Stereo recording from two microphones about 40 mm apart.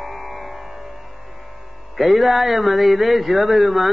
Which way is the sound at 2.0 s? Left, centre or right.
Centre.